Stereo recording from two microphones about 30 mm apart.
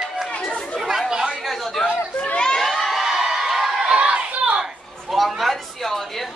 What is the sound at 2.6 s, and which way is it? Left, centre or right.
Crowd, centre.